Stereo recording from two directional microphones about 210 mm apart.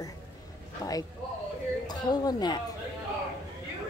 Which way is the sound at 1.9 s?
20° left (ahead or behind).